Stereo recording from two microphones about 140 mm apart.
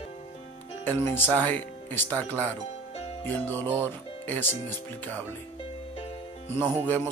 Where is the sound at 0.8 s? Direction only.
15° left (ahead or behind).